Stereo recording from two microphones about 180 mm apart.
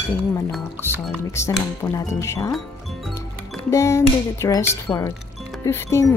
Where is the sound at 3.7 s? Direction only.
15° left (ahead or behind).